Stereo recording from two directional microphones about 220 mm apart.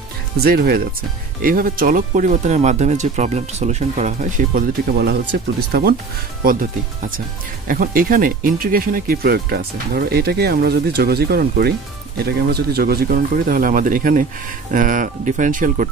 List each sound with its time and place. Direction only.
0.4 s speech: 45° right (ahead or behind)